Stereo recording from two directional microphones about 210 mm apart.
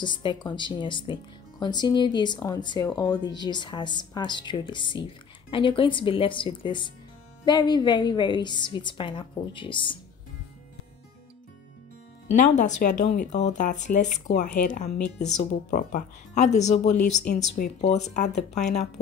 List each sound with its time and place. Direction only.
0.0 s speech: 20° left (ahead or behind)
12.4 s speech: 35° left (ahead or behind)